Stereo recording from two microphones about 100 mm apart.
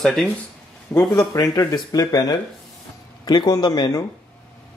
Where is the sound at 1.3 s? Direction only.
35° left (ahead or behind).